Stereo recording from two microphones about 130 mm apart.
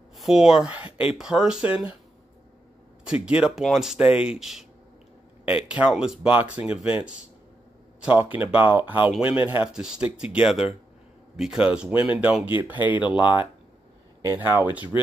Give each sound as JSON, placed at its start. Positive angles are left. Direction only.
{"t": 0.2, "sound": "speech", "side_deg": -5}
{"t": 3.1, "sound": "speech", "side_deg": -5}
{"t": 8.0, "sound": "speech", "side_deg": -10}
{"t": 13.2, "sound": "speech", "side_deg": 40}
{"t": 14.2, "sound": "speech", "side_deg": -20}